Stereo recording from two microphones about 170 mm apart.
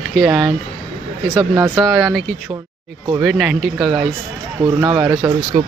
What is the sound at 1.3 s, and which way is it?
Speech, 20° right (ahead or behind).